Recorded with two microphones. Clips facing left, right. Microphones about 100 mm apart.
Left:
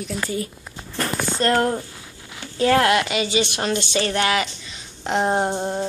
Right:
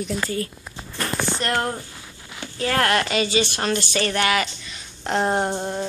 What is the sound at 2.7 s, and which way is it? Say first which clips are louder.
Speech: left 2 dB; 15° left (ahead or behind).